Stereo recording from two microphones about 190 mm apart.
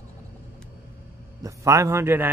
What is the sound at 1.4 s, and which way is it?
Speech, 15° right (ahead or behind).